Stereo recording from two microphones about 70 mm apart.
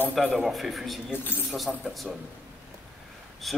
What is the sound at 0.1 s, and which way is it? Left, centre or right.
A man's voice, centre.